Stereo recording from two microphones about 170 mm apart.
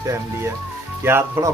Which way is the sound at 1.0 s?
15° right (ahead or behind).